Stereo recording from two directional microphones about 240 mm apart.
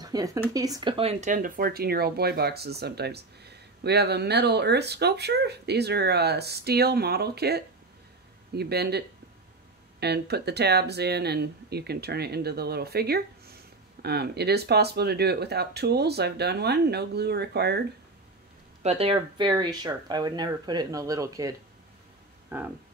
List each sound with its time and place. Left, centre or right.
0.0 s speech: centre; by 17.8 s right
18.8 s speech: right; by 22.7 s centre